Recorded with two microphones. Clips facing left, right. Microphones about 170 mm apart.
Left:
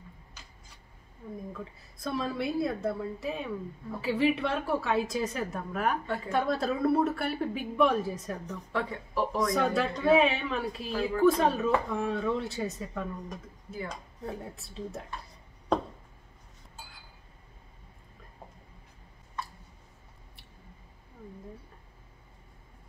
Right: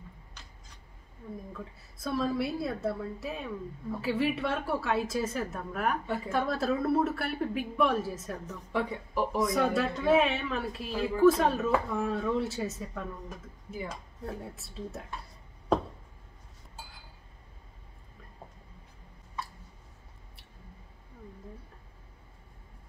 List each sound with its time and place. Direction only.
1.5 s a woman's voice: centre (ahead or behind)
9.5 s a woman's voice: centre (ahead or behind)
13.7 s speech: 10° right (ahead or behind)
14.2 s a woman's voice: centre (ahead or behind)